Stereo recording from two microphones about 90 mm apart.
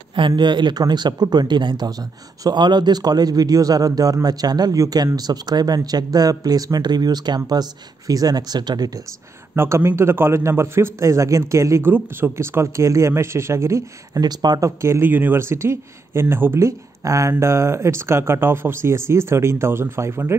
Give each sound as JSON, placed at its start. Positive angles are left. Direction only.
{"t": 0.4, "sound": "a man's voice", "side_deg": -60}
{"t": 9.6, "sound": "a man's voice", "side_deg": -30}
{"t": 14.2, "sound": "a man's voice", "side_deg": -50}
{"t": 14.6, "sound": "speech", "side_deg": -30}